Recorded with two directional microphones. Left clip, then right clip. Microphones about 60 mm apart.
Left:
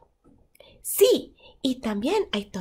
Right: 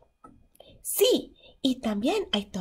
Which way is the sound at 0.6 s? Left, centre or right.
Left.